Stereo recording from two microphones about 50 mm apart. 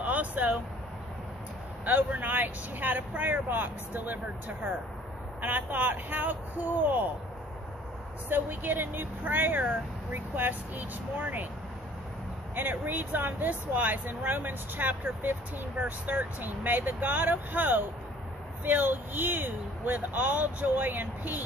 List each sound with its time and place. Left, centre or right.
0.0 s vehicle: right
2.0 s speech: right
8.3 s speech: right
12.5 s speech: right